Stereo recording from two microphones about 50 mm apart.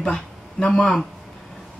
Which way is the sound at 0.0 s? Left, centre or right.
Centre.